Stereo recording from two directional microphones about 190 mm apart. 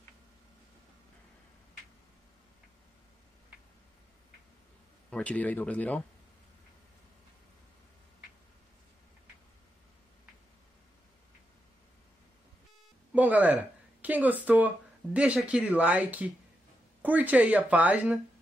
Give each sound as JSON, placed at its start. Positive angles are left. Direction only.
{"t": 5.1, "sound": "speech", "side_deg": 5}
{"t": 13.1, "sound": "music", "side_deg": -10}
{"t": 14.0, "sound": "speech", "side_deg": -10}